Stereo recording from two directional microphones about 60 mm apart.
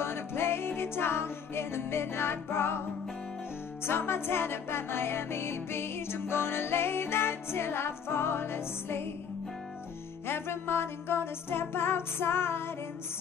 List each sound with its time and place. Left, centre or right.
0.0 s music: left
3.8 s music: left
10.2 s music: left